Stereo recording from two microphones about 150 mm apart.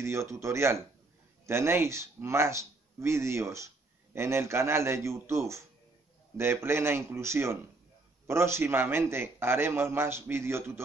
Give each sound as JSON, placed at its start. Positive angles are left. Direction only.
{"t": 0.0, "sound": "speech", "side_deg": -20}